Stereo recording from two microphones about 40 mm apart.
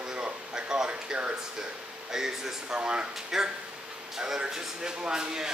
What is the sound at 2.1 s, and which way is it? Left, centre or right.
Speech, centre.